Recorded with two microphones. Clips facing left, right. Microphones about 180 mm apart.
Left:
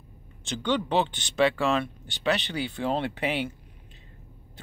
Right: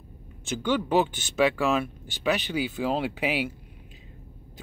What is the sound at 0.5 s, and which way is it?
Speech, 5° right (ahead or behind).